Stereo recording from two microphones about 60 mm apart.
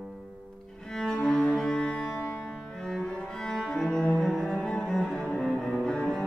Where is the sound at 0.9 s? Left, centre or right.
Centre.